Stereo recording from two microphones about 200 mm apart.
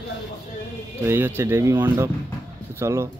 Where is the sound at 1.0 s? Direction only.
10° right (ahead or behind).